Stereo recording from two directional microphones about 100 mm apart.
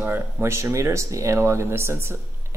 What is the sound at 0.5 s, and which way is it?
Speech, 30° right (ahead or behind).